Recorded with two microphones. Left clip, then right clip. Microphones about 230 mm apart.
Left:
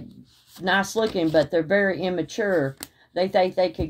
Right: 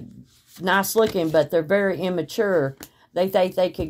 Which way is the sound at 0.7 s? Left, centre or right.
Right.